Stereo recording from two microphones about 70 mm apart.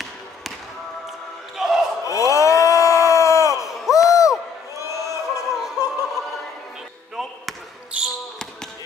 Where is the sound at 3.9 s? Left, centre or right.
Left.